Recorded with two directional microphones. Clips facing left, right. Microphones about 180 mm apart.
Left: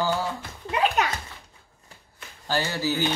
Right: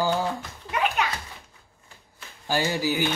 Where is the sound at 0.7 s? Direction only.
35° left (ahead or behind).